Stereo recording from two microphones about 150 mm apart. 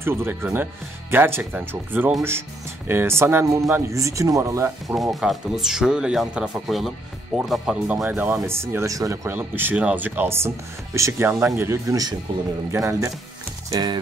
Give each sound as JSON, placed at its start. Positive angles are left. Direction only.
{"t": 0.0, "sound": "speech", "side_deg": -15}
{"t": 5.1, "sound": "speech", "side_deg": 0}
{"t": 13.7, "sound": "music", "side_deg": -25}